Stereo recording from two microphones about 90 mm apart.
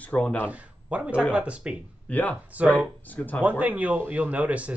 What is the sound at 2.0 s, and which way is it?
Speech, 20° left (ahead or behind).